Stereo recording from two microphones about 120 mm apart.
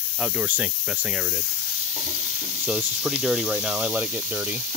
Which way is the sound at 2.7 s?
10° right (ahead or behind).